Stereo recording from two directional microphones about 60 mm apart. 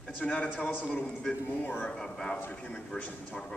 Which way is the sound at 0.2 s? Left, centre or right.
Left.